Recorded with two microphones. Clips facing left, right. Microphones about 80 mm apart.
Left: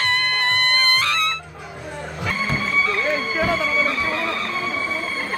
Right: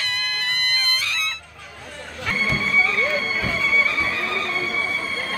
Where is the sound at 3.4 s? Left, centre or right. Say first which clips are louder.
Left 3 dB; left.